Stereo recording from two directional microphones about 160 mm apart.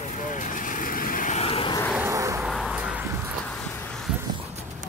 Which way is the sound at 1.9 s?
20° right (ahead or behind).